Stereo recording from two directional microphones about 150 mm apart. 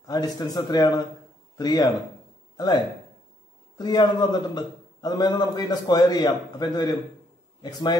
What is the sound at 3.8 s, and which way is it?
A man's voice, 30° left (ahead or behind).